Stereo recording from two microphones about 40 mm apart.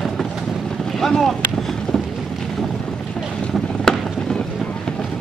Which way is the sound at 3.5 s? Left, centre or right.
Centre.